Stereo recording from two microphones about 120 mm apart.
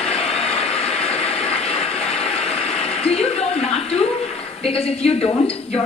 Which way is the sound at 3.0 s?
60° left (ahead or behind).